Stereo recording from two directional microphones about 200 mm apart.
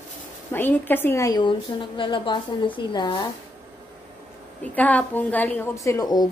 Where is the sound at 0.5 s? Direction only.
10° left (ahead or behind).